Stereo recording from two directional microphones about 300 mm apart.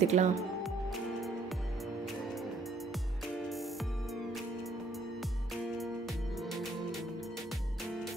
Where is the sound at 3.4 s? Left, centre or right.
Centre.